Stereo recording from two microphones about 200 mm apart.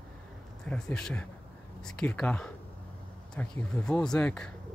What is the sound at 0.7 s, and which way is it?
Speech, 5° left (ahead or behind).